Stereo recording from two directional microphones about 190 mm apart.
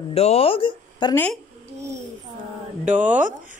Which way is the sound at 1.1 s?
10° left (ahead or behind).